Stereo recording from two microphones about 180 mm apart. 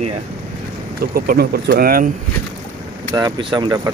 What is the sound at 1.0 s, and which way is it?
Speech, 55° right (ahead or behind).